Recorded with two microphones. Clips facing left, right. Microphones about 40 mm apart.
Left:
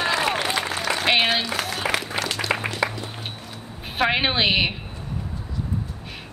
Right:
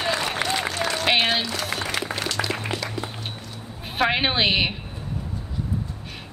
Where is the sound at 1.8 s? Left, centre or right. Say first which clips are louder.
Left 4 dB; left.